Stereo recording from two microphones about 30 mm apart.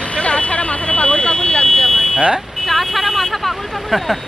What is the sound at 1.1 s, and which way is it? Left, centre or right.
Vehicle, left.